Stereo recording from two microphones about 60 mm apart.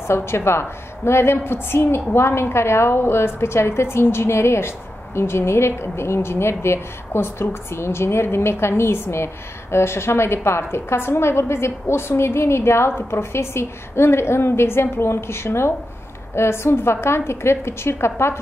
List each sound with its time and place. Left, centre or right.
0.1 s a woman's voice: left